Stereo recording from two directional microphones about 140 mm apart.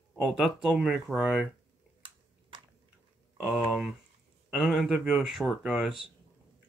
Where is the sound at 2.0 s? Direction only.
35° right (ahead or behind).